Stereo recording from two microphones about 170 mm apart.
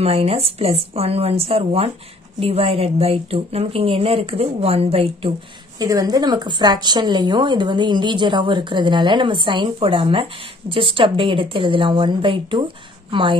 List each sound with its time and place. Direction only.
0.0 s speech: 35° right (ahead or behind)
5.8 s a woman's voice: 20° right (ahead or behind)